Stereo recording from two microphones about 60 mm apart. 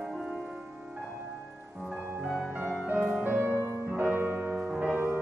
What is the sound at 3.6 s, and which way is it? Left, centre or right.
Music, left.